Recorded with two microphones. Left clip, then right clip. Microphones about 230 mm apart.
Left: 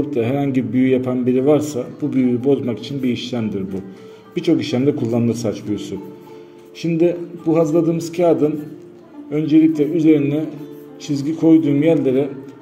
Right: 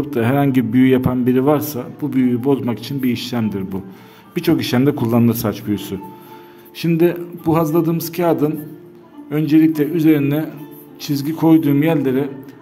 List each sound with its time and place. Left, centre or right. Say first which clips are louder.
0.1 s a man's voice: right 2 dB; right